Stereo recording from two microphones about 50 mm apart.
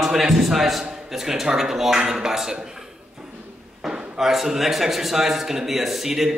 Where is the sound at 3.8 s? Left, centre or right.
Centre.